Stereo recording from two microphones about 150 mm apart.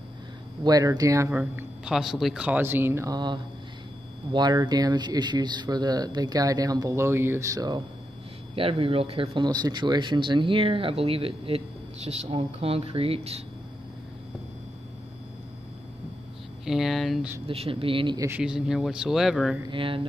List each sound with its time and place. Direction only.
0.7 s speech: 25° right (ahead or behind)
4.3 s speech: 30° right (ahead or behind)
8.5 s speech: 40° right (ahead or behind)
16.6 s speech: centre (ahead or behind)
17.5 s speech: 40° right (ahead or behind)
18.4 s speech: 5° right (ahead or behind)
19.7 s speech: 35° right (ahead or behind)